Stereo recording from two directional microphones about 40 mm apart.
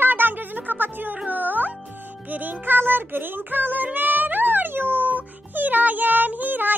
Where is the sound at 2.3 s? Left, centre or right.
Right.